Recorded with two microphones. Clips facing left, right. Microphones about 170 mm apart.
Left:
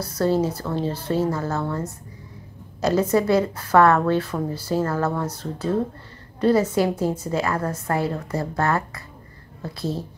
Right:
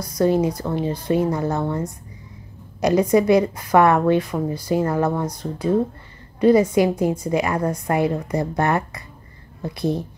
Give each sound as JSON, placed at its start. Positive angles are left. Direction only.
{"t": 0.0, "sound": "a woman's voice", "side_deg": -15}